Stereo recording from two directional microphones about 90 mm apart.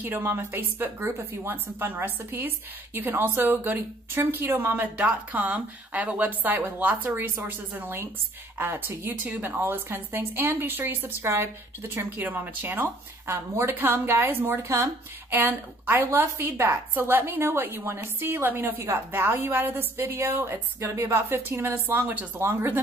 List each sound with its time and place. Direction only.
0.0 s a woman's voice: 25° right (ahead or behind)